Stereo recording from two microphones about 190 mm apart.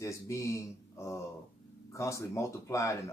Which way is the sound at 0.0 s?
15° left (ahead or behind).